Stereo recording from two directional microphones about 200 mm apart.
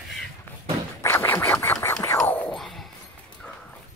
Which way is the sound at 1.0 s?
10° left (ahead or behind).